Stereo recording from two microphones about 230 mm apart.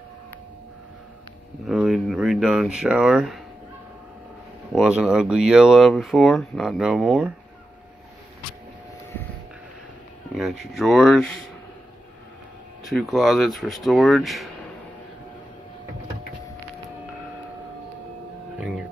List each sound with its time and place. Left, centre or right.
1.7 s speech: centre
4.7 s speech: centre
10.3 s speech: centre
12.8 s speech: centre